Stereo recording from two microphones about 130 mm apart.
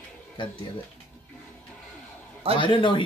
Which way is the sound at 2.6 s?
40° left (ahead or behind).